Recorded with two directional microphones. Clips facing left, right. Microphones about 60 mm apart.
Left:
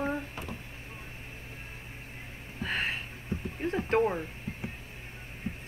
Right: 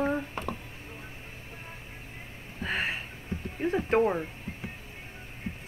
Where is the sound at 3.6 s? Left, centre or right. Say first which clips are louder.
Right 2 dB; centre.